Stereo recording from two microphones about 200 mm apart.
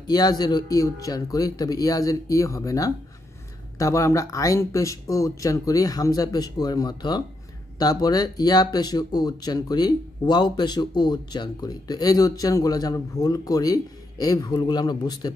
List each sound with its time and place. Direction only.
0.0 s speech: 20° left (ahead or behind)